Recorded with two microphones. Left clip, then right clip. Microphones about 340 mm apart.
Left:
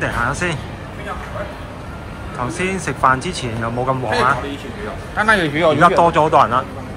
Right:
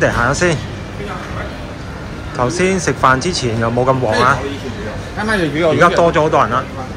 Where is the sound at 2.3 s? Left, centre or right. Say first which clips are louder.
Right 6 dB; centre.